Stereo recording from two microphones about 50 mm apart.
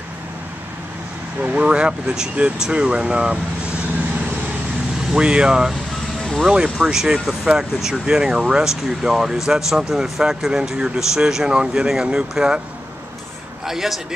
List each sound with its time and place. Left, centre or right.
1.4 s speech: right
5.1 s speech: centre
13.7 s speech: centre